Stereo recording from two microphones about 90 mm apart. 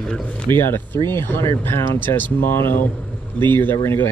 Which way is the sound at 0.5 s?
25° left (ahead or behind).